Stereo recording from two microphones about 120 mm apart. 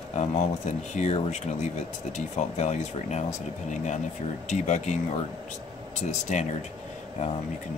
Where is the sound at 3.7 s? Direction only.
90° left.